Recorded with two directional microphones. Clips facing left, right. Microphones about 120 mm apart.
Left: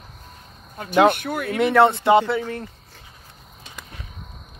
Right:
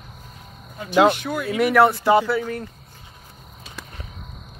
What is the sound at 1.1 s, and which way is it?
Speech, 55° left (ahead or behind).